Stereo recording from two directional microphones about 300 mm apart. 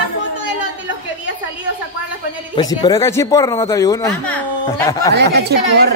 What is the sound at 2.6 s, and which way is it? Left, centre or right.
Speech, centre.